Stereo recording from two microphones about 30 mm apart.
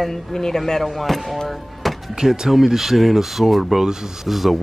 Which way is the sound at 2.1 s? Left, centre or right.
Centre.